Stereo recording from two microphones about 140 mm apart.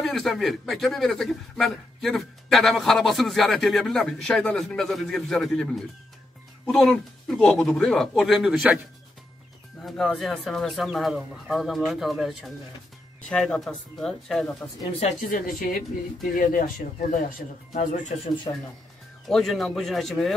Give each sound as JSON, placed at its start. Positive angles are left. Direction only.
{"t": 0.0, "sound": "speech", "side_deg": 0}
{"t": 9.8, "sound": "speech", "side_deg": 0}
{"t": 15.0, "sound": "speech", "side_deg": 60}
{"t": 17.7, "sound": "speech", "side_deg": 60}
{"t": 19.2, "sound": "speech", "side_deg": 0}